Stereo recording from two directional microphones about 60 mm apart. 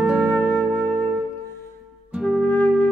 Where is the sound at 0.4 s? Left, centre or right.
Left.